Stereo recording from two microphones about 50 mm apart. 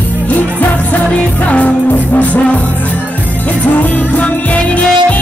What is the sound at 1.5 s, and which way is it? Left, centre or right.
Music, left.